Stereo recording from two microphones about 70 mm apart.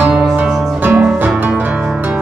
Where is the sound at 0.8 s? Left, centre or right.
Right.